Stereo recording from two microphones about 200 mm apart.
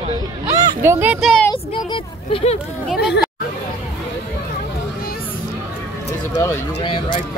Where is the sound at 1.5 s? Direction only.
25° left (ahead or behind).